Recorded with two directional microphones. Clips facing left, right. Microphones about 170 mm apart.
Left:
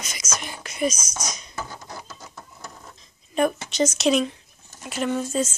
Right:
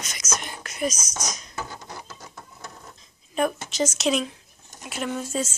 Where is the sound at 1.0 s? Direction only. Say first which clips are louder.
Even; 20° right (ahead or behind).